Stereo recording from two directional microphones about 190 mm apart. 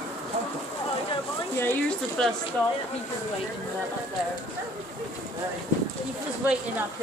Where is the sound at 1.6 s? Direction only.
10° left (ahead or behind).